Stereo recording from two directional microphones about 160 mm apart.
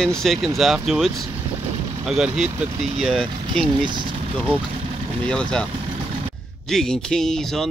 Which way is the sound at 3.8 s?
30° right (ahead or behind).